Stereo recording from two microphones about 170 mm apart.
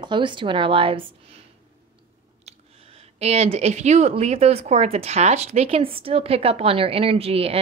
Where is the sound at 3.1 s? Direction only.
40° right (ahead or behind).